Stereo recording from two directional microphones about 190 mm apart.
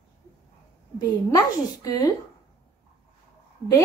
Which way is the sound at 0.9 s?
20° left (ahead or behind).